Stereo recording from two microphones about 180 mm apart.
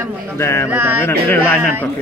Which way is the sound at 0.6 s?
10° right (ahead or behind).